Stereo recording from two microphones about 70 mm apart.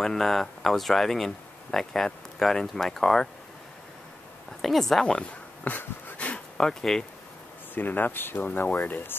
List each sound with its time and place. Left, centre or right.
0.0 s speech: centre
4.6 s speech: centre
5.7 s a sound: left
7.7 s speech: left